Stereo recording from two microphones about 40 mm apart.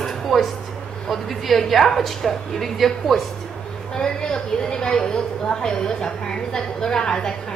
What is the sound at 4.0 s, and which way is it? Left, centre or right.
A woman's voice, centre.